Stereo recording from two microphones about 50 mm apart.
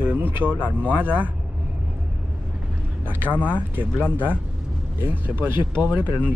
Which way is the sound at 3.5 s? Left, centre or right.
Right.